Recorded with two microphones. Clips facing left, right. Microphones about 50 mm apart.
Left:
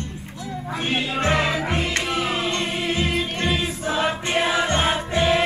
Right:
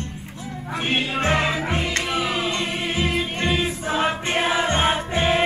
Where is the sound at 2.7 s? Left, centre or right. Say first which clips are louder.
Left 1 dB; right.